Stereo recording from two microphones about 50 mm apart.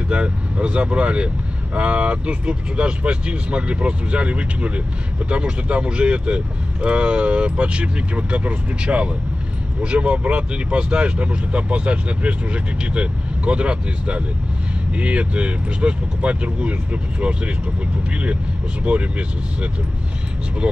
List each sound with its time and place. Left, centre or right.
0.1 s speech: right